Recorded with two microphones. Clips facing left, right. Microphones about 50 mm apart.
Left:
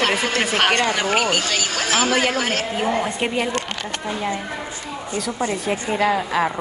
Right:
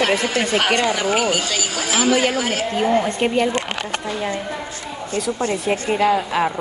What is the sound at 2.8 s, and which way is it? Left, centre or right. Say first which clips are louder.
Speech: right 5 dB; centre.